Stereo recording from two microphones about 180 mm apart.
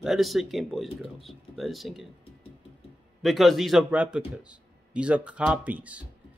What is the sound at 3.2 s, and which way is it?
Speech, centre (ahead or behind).